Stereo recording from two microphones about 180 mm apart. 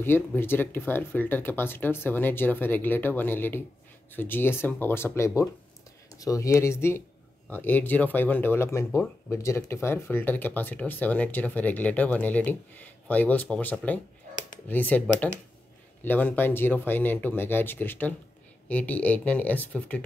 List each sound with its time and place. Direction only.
0.4 s speech: 10° left (ahead or behind)